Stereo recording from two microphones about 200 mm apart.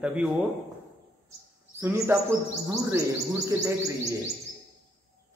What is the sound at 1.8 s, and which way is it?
Speech, 15° right (ahead or behind).